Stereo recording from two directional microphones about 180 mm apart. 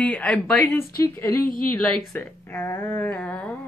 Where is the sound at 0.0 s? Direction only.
5° left (ahead or behind).